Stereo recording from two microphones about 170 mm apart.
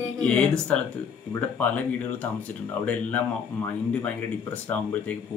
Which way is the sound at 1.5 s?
10° left (ahead or behind).